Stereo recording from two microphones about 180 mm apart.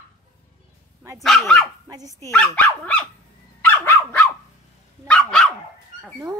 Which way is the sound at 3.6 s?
10° left (ahead or behind).